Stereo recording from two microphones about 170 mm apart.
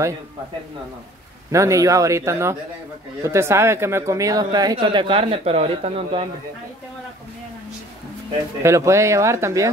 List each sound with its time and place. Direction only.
1.5 s speech: 20° right (ahead or behind); by 6.2 s 35° right (ahead or behind)
8.6 s speech: 15° right (ahead or behind)